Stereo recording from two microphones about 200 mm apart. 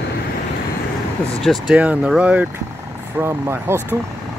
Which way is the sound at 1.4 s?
5° right (ahead or behind).